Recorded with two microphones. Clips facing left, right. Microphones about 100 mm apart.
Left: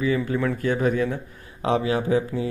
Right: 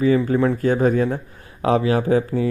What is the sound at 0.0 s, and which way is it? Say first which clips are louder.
Speech: right 6 dB; 40° right (ahead or behind).